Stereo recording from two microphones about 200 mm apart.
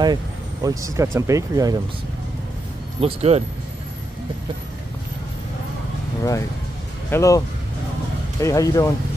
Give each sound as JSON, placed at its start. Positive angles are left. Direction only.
{"t": 0.0, "sound": "speech", "side_deg": -20}
{"t": 3.0, "sound": "speech", "side_deg": -30}
{"t": 7.1, "sound": "speech", "side_deg": 15}